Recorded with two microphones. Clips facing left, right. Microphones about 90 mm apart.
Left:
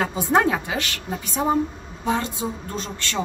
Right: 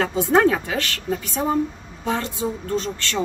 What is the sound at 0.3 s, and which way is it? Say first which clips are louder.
Speech: right 2 dB; 20° left (ahead or behind).